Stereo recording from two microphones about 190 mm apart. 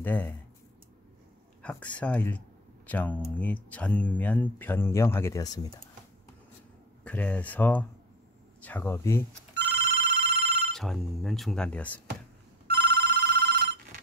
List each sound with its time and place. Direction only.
0.0 s speech: 10° left (ahead or behind)
1.6 s speech: 5° left (ahead or behind)
7.1 s speech: 10° left (ahead or behind)
9.6 s telephone bell ringing: 60° right (ahead or behind)
10.7 s speech: centre (ahead or behind)
12.6 s telephone bell ringing: 55° right (ahead or behind)